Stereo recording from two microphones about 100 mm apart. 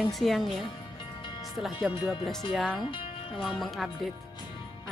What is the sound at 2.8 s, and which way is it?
Speech, 60° left (ahead or behind).